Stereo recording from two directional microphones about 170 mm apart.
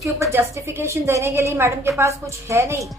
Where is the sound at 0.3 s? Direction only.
15° right (ahead or behind).